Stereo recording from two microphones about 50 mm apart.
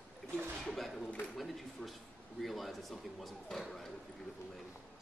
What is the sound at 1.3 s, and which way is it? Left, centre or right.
Speech, centre.